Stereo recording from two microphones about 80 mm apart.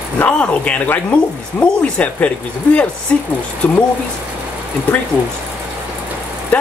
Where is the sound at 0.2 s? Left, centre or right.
Centre.